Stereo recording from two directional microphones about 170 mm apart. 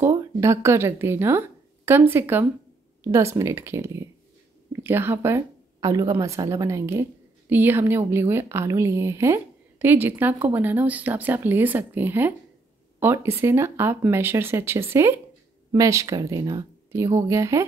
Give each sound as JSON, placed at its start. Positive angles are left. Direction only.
{"t": 0.0, "sound": "a woman's voice", "side_deg": -15}